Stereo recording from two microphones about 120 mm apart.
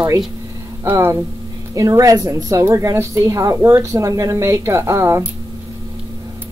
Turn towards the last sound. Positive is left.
turn(degrees=-25)  # may be behind; listen again after turning